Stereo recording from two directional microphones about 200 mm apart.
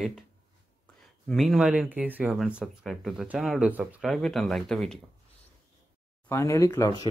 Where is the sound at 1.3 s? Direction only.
Centre (ahead or behind).